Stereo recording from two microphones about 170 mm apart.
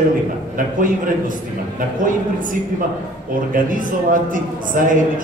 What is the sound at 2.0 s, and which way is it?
A man's voice, 50° right (ahead or behind).